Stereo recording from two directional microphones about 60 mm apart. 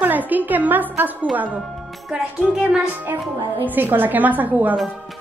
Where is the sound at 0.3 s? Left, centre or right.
Right.